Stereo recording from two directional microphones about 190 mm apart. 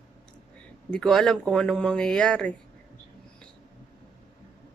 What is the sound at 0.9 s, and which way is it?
Speech, 5° left (ahead or behind).